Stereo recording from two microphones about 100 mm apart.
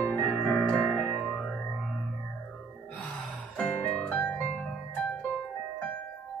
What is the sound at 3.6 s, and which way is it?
Music, 15° left (ahead or behind).